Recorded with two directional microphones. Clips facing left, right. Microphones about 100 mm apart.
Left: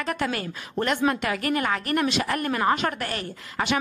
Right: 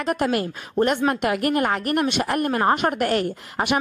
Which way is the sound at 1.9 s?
60° right (ahead or behind).